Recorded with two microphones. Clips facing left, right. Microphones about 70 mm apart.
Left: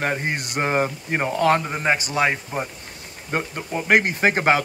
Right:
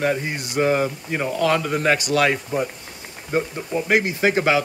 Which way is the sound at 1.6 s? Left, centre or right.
Left.